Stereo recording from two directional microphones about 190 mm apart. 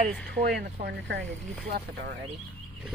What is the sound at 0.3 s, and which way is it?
Speech, 60° right (ahead or behind).